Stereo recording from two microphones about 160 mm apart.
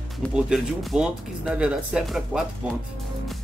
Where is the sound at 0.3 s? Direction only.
5° right (ahead or behind).